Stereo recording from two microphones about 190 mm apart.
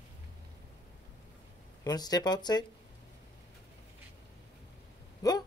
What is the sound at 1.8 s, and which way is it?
Speech, 20° left (ahead or behind).